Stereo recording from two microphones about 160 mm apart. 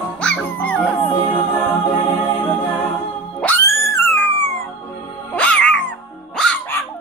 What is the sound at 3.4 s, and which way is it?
Music, 15° left (ahead or behind).